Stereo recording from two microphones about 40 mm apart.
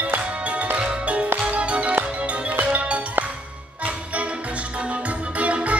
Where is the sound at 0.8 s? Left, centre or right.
Right.